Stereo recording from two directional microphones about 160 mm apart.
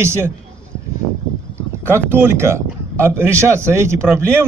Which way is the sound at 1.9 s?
15° right (ahead or behind).